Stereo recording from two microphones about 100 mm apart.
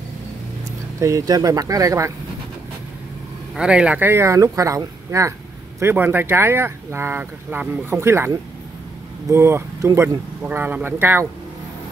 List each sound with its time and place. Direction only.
0.9 s speech: 30° right (ahead or behind)
3.5 s speech: 10° right (ahead or behind)
4.0 s speech: 25° right (ahead or behind)
9.3 s speech: 25° right (ahead or behind)